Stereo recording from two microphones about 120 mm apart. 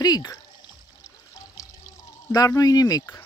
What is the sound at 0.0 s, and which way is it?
Speech, 35° left (ahead or behind).